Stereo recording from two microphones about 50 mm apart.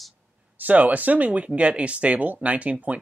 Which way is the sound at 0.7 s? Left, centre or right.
Right.